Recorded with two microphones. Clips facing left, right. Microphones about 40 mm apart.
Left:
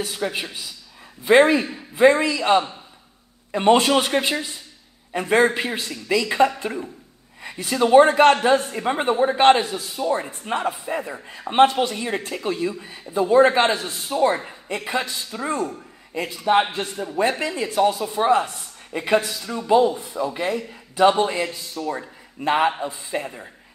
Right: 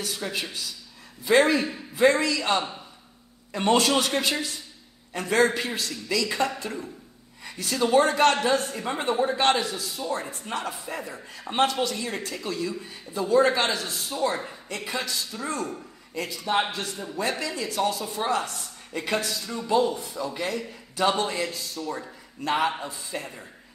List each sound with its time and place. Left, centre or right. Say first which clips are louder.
0.0 s a man's voice: left 5 dB; left